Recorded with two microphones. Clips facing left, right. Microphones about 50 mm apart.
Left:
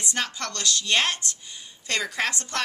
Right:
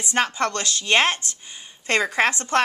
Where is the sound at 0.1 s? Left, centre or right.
Right.